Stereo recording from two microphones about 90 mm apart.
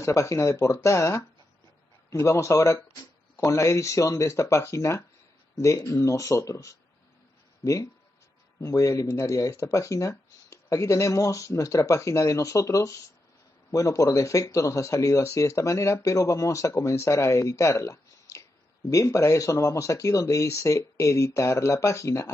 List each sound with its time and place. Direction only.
0.0 s speech: 35° left (ahead or behind)